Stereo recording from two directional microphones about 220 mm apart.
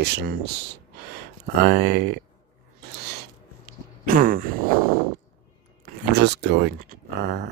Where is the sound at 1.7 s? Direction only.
50° right (ahead or behind).